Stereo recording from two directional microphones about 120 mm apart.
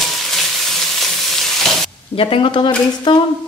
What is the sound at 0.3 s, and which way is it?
Frying, centre (ahead or behind).